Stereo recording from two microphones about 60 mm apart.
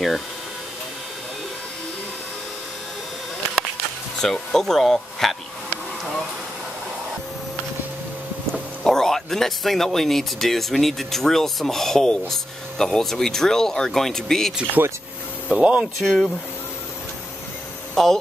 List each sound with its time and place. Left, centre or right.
4.2 s speech: centre
8.8 s speech: centre
14.8 s speech: right
15.5 s speech: centre
17.9 s speech: centre